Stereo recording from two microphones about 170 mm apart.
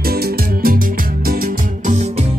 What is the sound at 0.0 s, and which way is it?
Music, 65° right (ahead or behind).